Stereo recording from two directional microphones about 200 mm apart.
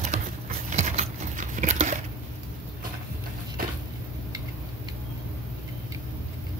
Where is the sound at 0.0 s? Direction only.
35° right (ahead or behind).